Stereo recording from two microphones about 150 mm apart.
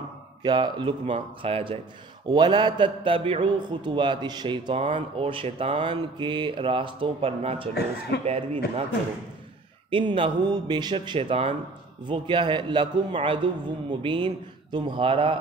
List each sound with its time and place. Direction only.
0.4 s a man's voice: 30° right (ahead or behind)
8.1 s speech: 90° left
9.8 s a man's voice: 35° right (ahead or behind)